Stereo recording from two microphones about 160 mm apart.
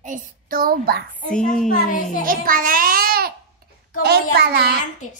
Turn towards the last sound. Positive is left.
turn(degrees=-85)